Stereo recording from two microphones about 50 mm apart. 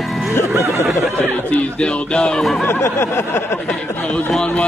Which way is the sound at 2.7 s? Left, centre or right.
Left.